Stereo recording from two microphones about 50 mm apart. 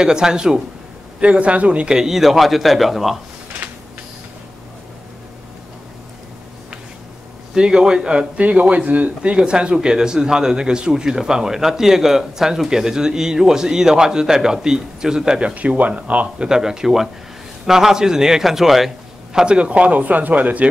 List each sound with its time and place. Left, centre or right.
0.0 s a man's voice: centre
1.2 s a man's voice: right
2.0 s a man's voice: centre
7.5 s a man's voice: centre
15.5 s a man's voice: right
16.4 s a man's voice: centre
19.4 s speech: right